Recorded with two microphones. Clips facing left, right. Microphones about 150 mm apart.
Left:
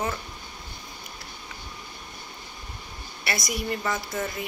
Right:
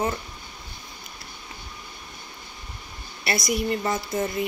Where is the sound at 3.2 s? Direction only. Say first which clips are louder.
Right 5 dB; 30° right (ahead or behind).